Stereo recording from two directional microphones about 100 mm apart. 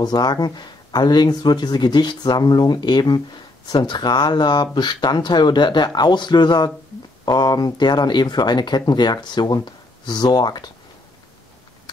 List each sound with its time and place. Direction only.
0.0 s speech: 45° left (ahead or behind)